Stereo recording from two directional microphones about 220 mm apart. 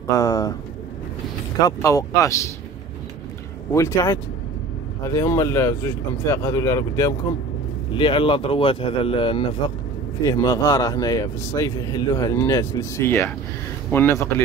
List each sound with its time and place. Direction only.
0.1 s a man's voice: 15° left (ahead or behind)
1.6 s a man's voice: 15° left (ahead or behind)
3.7 s a man's voice: 15° left (ahead or behind)